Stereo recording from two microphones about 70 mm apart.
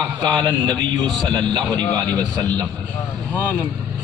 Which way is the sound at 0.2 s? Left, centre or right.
Right.